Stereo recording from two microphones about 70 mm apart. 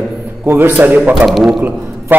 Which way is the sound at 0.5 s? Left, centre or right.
Right.